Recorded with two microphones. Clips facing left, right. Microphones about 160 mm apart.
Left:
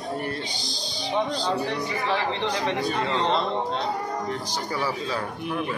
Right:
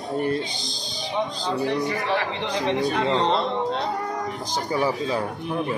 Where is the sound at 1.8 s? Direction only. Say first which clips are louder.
Right 2 dB; 70° right (ahead or behind).